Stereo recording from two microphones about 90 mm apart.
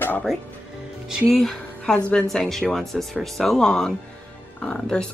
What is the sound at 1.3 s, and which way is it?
A woman's voice, 5° left (ahead or behind).